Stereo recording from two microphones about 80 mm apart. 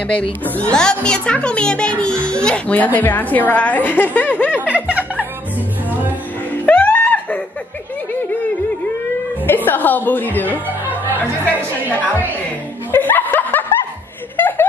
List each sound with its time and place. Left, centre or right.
0.1 s speech: centre
4.6 s music: centre
6.6 s music: left
9.7 s speech: left
12.9 s snicker: left
14.3 s a sound: left